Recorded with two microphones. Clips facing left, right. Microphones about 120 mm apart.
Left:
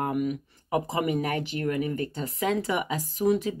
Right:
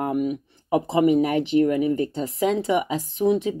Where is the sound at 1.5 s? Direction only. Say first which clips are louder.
Right 9 dB; 30° right (ahead or behind).